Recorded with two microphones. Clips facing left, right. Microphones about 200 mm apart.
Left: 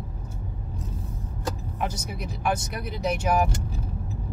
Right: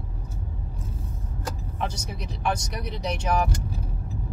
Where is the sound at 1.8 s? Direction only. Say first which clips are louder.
Left 1 dB; 25° right (ahead or behind).